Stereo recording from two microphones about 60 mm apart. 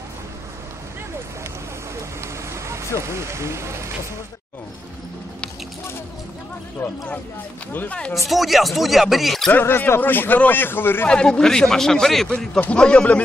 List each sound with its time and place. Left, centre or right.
2.5 s vehicle: right
3.0 s speech: right
8.3 s speech: centre
9.5 s speech: left
11.1 s speech: centre
12.5 s speech: left